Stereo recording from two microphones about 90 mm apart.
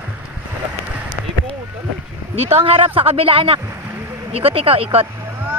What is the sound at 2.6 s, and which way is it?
Speech, 90° right.